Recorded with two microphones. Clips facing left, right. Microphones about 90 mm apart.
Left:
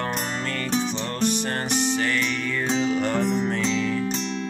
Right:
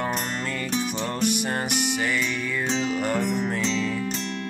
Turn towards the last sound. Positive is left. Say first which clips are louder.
# left 3 dB
turn(degrees=20)  # may be behind; listen again after turning